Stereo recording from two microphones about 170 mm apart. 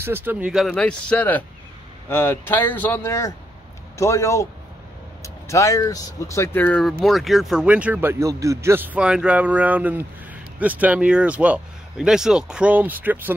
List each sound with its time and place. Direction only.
0.0 s speech: 10° right (ahead or behind)
0.7 s speech: 5° left (ahead or behind); by 13.3 s 10° right (ahead or behind)